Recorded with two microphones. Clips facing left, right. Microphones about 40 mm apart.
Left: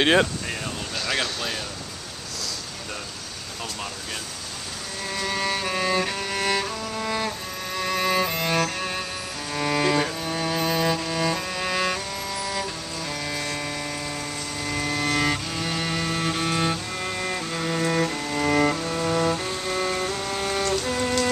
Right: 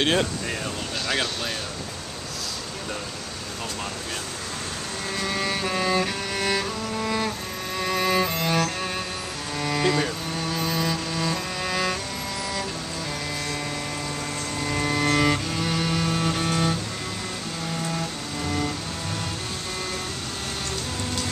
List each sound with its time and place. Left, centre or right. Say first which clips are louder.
0.0 s speech: left 3 dB; centre
1.0 s speech: even; centre
5.1 s music: left 1 dB; centre
10.2 s music: left 2 dB; centre
13.3 s music: left 1 dB; centre
14.6 s cello: right 2 dB; centre
17.7 s cello: left 8 dB; left